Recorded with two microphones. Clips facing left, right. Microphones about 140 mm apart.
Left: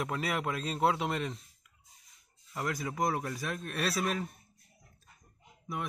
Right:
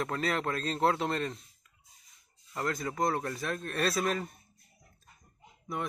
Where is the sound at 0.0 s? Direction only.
10° left (ahead or behind).